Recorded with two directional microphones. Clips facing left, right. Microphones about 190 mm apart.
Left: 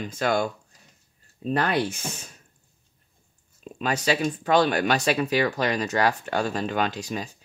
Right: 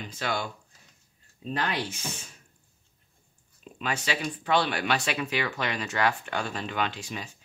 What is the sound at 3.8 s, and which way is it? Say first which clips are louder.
Speech: left 7 dB; 40° left (ahead or behind).